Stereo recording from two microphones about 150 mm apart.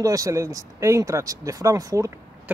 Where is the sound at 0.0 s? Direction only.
20° right (ahead or behind).